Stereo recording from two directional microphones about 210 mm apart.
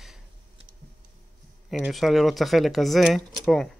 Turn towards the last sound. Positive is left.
turn(degrees=0)  # may be behind; listen again after turning